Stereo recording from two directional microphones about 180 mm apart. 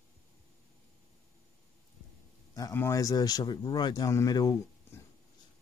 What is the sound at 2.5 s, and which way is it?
Speech, 15° left (ahead or behind).